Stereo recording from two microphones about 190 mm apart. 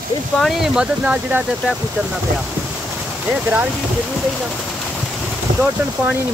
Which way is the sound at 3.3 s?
10° right (ahead or behind).